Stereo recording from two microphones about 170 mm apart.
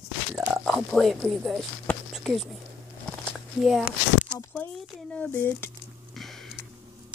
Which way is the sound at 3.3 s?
Centre (ahead or behind).